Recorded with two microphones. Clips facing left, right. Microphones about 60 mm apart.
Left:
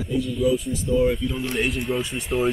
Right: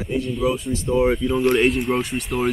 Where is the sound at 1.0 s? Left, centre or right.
Right.